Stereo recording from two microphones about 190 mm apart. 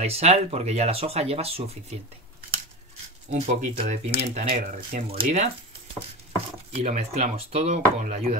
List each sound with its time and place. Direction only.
0.0 s speech: 35° right (ahead or behind)
3.3 s speech: 35° right (ahead or behind)
6.7 s speech: 35° right (ahead or behind)